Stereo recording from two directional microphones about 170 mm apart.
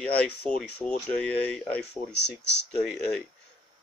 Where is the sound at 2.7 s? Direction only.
5° left (ahead or behind).